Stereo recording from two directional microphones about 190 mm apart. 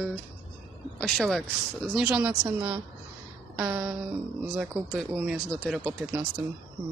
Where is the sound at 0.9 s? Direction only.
Centre (ahead or behind).